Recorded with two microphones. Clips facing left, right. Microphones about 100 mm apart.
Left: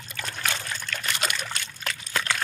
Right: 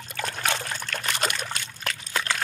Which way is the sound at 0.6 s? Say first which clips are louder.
Right 1 dB; 40° right (ahead or behind).